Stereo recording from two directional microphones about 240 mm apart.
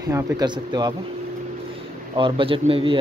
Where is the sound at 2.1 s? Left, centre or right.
Right.